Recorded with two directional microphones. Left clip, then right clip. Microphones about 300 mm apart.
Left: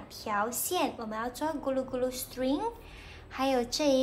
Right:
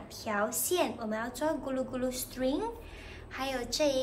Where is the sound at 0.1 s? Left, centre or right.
Centre.